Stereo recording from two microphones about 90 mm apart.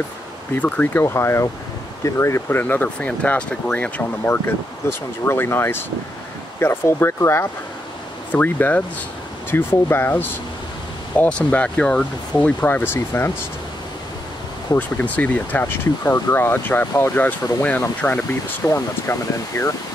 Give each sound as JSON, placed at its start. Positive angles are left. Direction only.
{"t": 0.6, "sound": "speech", "side_deg": 15}
{"t": 1.0, "sound": "speech", "side_deg": 30}
{"t": 2.6, "sound": "speech", "side_deg": 15}
{"t": 4.8, "sound": "speech", "side_deg": 25}
{"t": 14.8, "sound": "speech", "side_deg": 20}
{"t": 18.7, "sound": "speech", "side_deg": 35}